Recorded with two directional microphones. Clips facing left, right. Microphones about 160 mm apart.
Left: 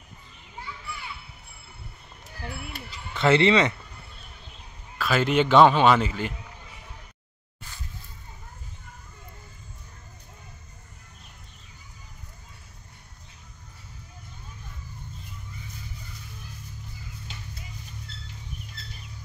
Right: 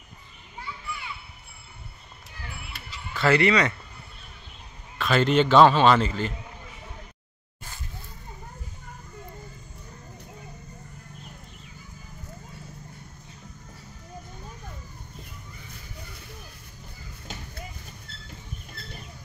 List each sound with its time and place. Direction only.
3.2 s speech: 25° left (ahead or behind)
4.9 s a man's voice: 5° left (ahead or behind)
18.8 s chicken: 60° right (ahead or behind)